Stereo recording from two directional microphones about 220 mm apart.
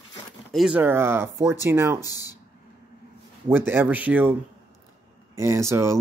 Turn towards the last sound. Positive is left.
turn(degrees=-10)  # may be behind; listen again after turning